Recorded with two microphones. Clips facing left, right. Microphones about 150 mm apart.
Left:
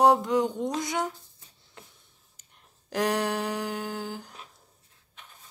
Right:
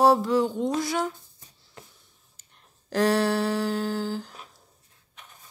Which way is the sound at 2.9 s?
15° left (ahead or behind).